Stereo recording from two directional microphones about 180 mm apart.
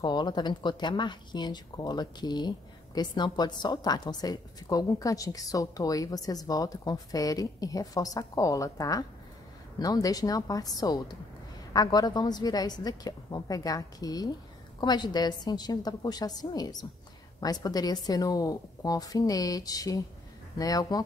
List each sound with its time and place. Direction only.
0.0 s speech: 25° left (ahead or behind)